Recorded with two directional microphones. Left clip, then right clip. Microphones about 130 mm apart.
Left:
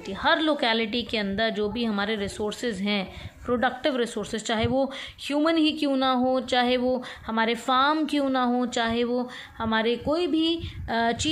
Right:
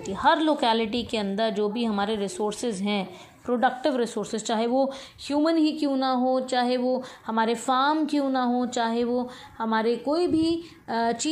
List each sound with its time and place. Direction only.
0.1 s a woman's voice: 5° left (ahead or behind); by 7.0 s 25° left (ahead or behind)
7.2 s a woman's voice: 10° left (ahead or behind)
7.9 s a woman's voice: 25° left (ahead or behind)
10.0 s speech: 30° left (ahead or behind)